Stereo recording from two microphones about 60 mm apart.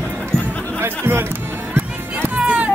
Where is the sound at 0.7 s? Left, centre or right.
Right.